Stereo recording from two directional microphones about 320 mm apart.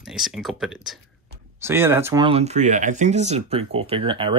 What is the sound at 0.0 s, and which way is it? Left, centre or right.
Speech, centre.